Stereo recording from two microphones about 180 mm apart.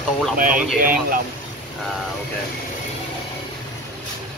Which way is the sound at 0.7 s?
55° right (ahead or behind).